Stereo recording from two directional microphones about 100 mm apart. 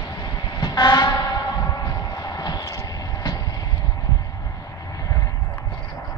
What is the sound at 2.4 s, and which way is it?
Vehicle, 40° left (ahead or behind).